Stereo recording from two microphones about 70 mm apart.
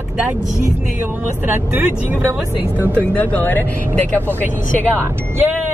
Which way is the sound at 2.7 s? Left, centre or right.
Right.